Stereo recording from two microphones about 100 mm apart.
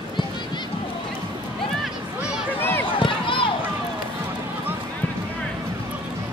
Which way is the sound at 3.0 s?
60° left (ahead or behind).